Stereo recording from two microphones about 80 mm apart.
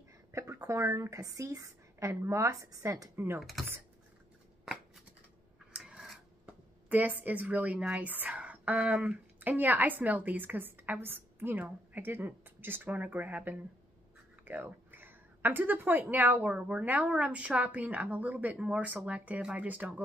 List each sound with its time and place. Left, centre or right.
0.3 s a woman's voice: right
3.3 s speech: centre
5.8 s a sound: centre
6.4 s a woman's voice: centre